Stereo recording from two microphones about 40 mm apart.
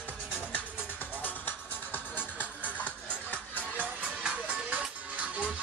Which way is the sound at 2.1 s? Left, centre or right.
Left.